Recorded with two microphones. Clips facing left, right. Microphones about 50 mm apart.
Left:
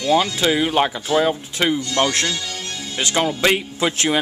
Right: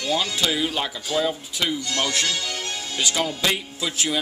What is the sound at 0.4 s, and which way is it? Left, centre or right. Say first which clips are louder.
Speech: left 6 dB; left.